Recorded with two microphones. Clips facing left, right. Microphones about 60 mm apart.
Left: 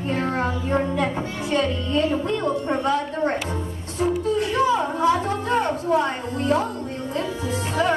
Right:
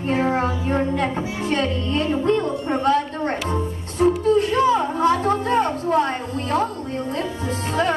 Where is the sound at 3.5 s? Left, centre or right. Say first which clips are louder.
Right 4 dB; right.